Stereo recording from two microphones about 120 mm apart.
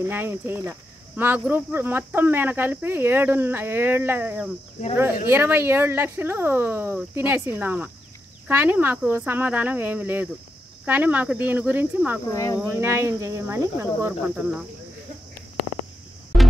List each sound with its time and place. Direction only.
0.0 s speech: 20° right (ahead or behind)
12.3 s speech: 30° left (ahead or behind)
12.6 s speech: 20° right (ahead or behind)